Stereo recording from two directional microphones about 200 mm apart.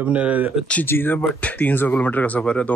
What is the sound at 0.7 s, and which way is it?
Speech, 10° left (ahead or behind).